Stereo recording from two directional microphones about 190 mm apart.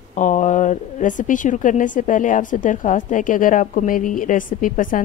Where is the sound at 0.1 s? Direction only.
40° left (ahead or behind).